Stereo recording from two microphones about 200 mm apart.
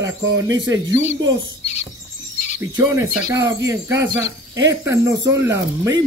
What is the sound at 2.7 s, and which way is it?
Speech, 15° right (ahead or behind).